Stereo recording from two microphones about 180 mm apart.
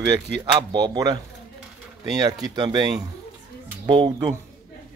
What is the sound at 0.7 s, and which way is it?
Speech, 25° right (ahead or behind).